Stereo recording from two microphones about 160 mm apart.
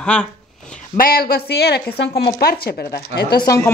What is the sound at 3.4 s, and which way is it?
Speech, 20° left (ahead or behind).